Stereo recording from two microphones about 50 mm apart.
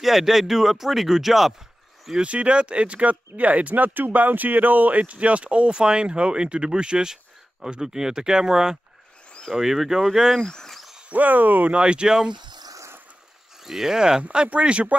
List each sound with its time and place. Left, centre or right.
0.0 s speech: centre
2.1 s speech: right; by 10.4 s centre
10.4 s speech: centre
11.1 s speech: right
11.7 s speech: centre
13.7 s speech: centre
14.2 s speech: right